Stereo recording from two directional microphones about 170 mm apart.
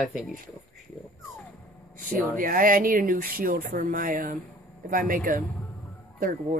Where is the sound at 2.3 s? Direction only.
55° right (ahead or behind).